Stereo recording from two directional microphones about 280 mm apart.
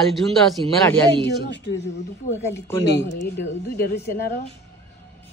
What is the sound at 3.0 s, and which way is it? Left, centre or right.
Speech, left.